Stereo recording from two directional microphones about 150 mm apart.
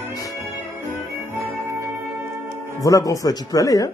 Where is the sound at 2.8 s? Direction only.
20° left (ahead or behind).